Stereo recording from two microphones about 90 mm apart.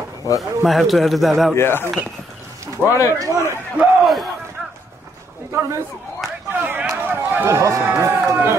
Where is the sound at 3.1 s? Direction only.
35° right (ahead or behind).